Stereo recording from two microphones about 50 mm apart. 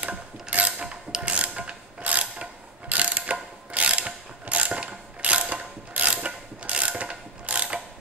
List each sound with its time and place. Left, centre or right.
0.0 s mechanisms: right
0.8 s mechanisms: centre
1.3 s mechanisms: right
2.9 s ratchet: right
6.2 s mechanisms: right